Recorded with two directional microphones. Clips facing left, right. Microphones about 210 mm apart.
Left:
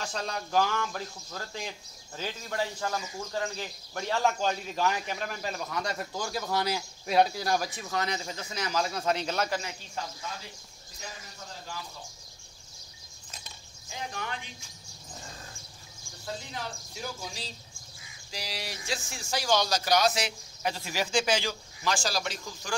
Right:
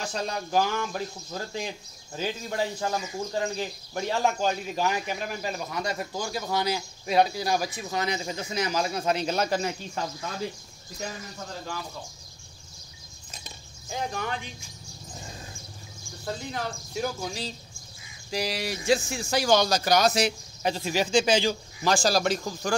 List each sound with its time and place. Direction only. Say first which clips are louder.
0.0 s speech: right 3 dB; 15° right (ahead or behind)
13.8 s speech: right 6 dB; 45° right (ahead or behind)
16.3 s speech: right 5 dB; 55° right (ahead or behind)
20.6 s speech: right 5 dB; 25° right (ahead or behind)
21.8 s speech: right 7 dB; 35° right (ahead or behind)